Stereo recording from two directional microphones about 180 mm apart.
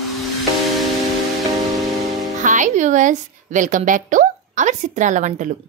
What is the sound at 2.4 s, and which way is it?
A woman's voice, 45° right (ahead or behind).